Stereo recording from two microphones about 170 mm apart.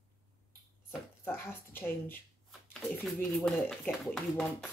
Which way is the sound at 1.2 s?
10° left (ahead or behind).